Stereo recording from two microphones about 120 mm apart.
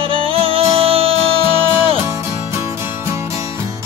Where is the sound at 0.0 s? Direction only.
50° right (ahead or behind).